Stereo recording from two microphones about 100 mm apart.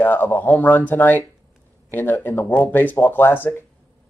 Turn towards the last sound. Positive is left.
turn(degrees=20)  # may be behind; listen again after turning